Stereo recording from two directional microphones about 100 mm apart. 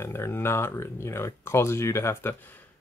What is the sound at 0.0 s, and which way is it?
Speech, 25° left (ahead or behind).